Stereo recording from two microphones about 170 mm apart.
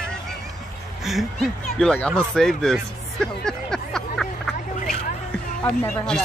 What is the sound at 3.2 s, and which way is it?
Music, 5° left (ahead or behind).